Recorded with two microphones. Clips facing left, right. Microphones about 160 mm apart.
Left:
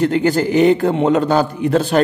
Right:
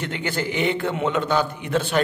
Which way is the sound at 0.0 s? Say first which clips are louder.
Left 12 dB; 40° left (ahead or behind).